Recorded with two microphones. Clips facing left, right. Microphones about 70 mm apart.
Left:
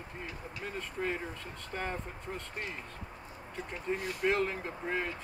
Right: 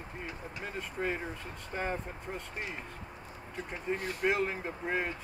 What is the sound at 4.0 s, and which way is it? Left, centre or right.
Speech, right.